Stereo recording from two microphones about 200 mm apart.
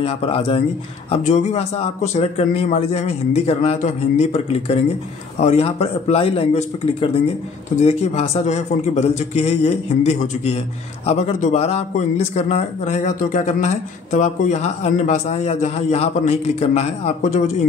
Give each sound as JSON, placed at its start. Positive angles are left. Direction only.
{"t": 0.0, "sound": "speech", "side_deg": 30}